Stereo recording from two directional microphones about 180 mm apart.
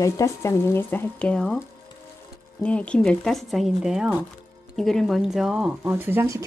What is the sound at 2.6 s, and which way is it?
Speech, 5° left (ahead or behind).